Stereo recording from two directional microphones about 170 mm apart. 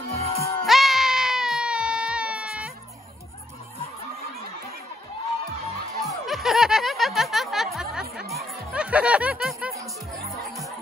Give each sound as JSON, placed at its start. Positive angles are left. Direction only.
{"t": 0.1, "sound": "music", "side_deg": 40}
{"t": 0.7, "sound": "baby cry", "side_deg": 0}
{"t": 6.0, "sound": "snicker", "side_deg": 0}